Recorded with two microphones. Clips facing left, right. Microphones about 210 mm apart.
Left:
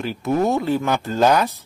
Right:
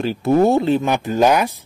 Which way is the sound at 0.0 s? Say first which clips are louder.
Right 5 dB; 35° right (ahead or behind).